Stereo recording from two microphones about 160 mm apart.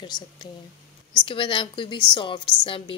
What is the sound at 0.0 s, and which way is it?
A woman's voice, 25° left (ahead or behind).